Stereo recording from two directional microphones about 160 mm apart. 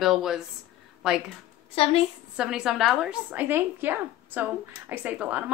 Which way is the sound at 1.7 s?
35° left (ahead or behind).